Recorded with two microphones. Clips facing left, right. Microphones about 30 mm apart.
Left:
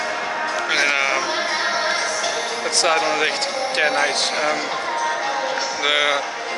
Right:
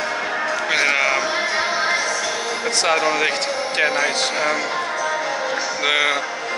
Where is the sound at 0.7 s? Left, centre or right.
Centre.